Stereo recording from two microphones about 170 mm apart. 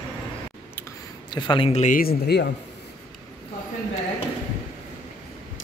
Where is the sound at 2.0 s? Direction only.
70° left (ahead or behind).